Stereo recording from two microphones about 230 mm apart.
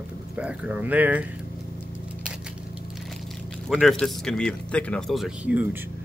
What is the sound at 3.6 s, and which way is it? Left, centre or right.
A man's voice, centre.